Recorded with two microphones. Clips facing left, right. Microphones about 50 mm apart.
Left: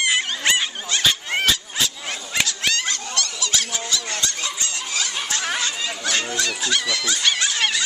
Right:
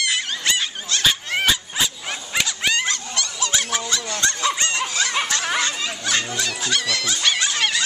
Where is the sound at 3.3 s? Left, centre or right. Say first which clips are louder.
Right 2 dB; right.